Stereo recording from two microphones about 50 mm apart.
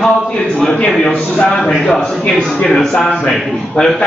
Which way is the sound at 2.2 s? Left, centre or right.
Centre.